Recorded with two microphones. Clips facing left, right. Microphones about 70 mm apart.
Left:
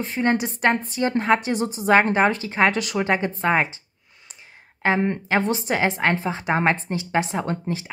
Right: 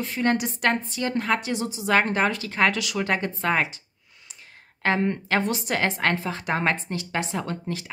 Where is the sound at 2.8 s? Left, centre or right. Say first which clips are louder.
Left 3 dB; left.